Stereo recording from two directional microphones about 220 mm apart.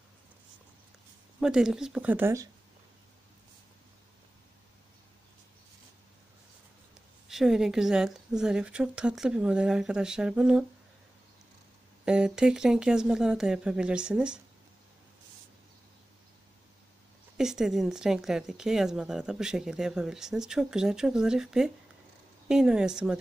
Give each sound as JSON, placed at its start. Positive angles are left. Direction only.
{"t": 1.4, "sound": "speech", "side_deg": 0}
{"t": 7.2, "sound": "speech", "side_deg": 0}
{"t": 12.0, "sound": "speech", "side_deg": -5}
{"t": 17.4, "sound": "speech", "side_deg": 0}